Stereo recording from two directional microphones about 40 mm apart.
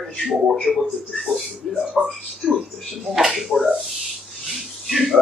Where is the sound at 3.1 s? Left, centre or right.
Centre.